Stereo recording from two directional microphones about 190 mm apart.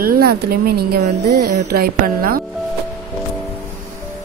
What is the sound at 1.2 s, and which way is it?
Music, 60° right (ahead or behind).